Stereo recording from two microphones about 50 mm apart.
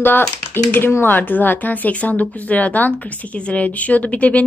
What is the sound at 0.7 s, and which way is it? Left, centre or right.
A woman's voice, left.